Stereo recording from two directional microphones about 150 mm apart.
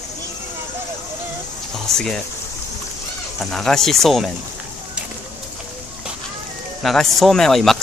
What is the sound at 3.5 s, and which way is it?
Speech, centre (ahead or behind).